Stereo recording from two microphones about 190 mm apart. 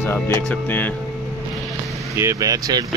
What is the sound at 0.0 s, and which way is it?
Speech, 10° left (ahead or behind).